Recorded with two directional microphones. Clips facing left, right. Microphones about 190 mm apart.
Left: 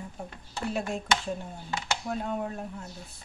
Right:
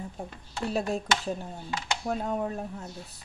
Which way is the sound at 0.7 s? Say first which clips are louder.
Right 2 dB; 35° right (ahead or behind).